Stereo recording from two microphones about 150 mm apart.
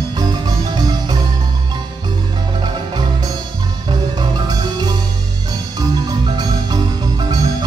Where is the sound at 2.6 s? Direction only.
25° right (ahead or behind).